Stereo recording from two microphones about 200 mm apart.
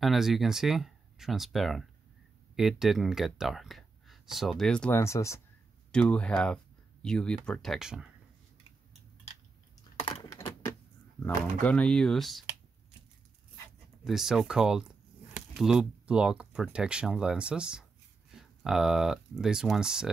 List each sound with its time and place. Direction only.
0.0 s speech: centre (ahead or behind)
9.9 s typing: 30° left (ahead or behind)
10.3 s typing: 15° left (ahead or behind)
11.6 s speech: 5° left (ahead or behind)
14.0 s speech: centre (ahead or behind)